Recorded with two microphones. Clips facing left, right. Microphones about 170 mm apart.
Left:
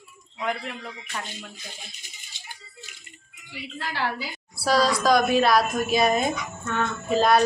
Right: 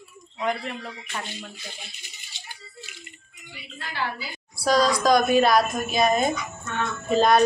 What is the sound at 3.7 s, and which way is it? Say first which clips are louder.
Speech: left 2 dB; 80° left.